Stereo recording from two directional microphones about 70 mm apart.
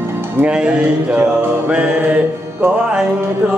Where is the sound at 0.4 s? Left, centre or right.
Centre.